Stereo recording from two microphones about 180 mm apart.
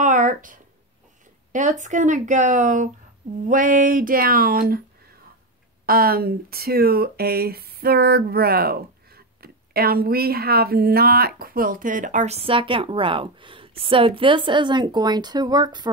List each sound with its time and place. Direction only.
0.0 s a sound: 45° right (ahead or behind)
1.5 s speech: 40° right (ahead or behind)
5.9 s speech: 55° right (ahead or behind); by 15.9 s 20° right (ahead or behind)